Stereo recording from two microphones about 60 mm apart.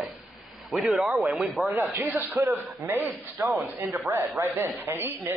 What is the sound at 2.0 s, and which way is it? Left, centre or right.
Speech, right.